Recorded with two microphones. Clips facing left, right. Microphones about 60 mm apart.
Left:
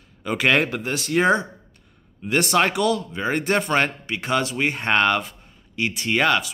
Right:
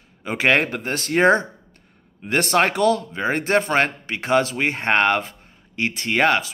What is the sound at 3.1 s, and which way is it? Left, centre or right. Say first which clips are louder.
A man's voice: right 2 dB; right.